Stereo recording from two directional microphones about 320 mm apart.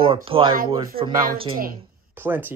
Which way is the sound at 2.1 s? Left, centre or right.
Centre.